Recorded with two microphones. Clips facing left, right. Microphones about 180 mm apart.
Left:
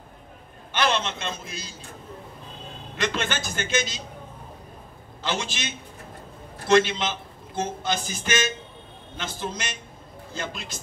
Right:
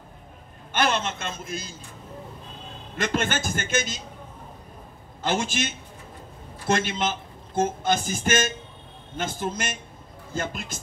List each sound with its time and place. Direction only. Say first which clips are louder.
0.7 s speech: even; 50° right (ahead or behind)
3.0 s speech: right 2 dB; 50° right (ahead or behind)
5.2 s speech: right 4 dB; 50° right (ahead or behind)
6.7 s speech: left 4 dB; 50° right (ahead or behind)